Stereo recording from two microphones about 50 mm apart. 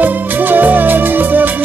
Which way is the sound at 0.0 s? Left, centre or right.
Right.